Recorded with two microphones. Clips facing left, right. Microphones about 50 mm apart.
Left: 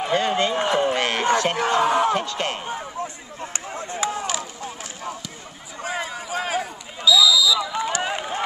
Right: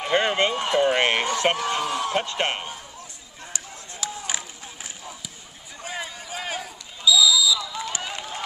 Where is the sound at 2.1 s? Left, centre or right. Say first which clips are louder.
Even; right.